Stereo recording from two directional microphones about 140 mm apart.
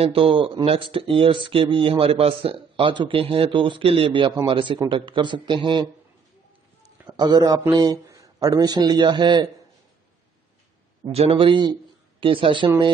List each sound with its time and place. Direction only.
0.0 s a man's voice: 40° right (ahead or behind)
7.1 s a man's voice: 30° right (ahead or behind)
11.1 s a man's voice: 45° right (ahead or behind)